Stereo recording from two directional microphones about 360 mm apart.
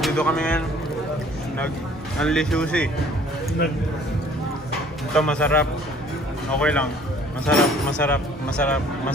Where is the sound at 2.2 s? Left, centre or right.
Centre.